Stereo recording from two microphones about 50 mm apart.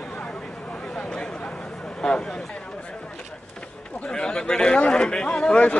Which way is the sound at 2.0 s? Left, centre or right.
Centre.